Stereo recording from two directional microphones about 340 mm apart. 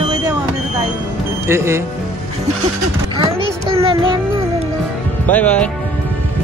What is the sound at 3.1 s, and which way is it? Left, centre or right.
A child's voice, centre.